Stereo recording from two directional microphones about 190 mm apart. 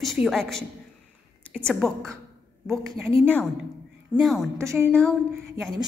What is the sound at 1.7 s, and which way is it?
Speech, centre (ahead or behind).